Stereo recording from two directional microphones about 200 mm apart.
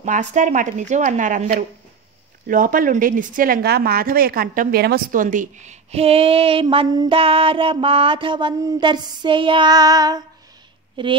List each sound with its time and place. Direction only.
0.0 s speech: 35° right (ahead or behind)